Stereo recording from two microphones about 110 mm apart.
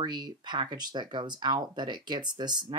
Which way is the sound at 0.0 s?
40° right (ahead or behind).